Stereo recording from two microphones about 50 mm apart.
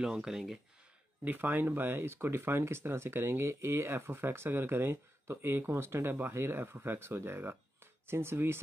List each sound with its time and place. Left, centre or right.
0.0 s speech: centre
1.2 s speech: right